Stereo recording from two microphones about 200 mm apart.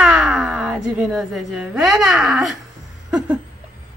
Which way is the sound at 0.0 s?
5° right (ahead or behind).